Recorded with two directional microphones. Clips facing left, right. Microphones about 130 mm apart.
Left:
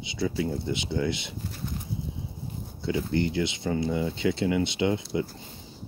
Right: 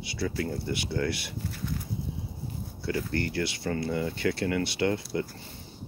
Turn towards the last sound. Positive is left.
turn(degrees=20)  # may be behind; listen again after turning